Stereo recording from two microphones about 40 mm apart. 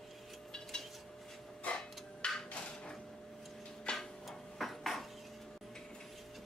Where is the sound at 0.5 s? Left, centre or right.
Centre.